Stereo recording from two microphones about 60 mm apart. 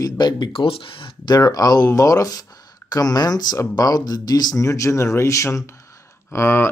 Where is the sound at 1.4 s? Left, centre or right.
Left.